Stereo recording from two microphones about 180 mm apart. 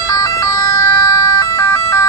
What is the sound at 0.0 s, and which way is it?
Emergency vehicle, 20° left (ahead or behind).